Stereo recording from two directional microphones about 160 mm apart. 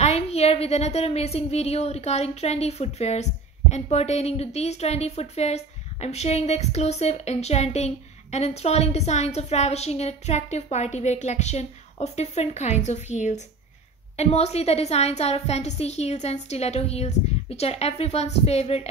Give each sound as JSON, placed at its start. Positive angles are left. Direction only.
{"t": 0.0, "sound": "a woman's voice", "side_deg": 40}